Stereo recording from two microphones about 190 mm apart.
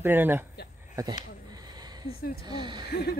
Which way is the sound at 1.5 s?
20° right (ahead or behind).